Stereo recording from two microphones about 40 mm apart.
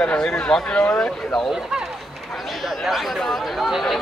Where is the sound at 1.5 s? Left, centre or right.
Centre.